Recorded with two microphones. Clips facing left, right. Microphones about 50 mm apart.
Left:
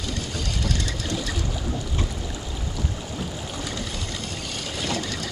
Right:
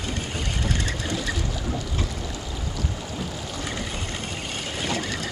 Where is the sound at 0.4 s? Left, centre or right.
Right.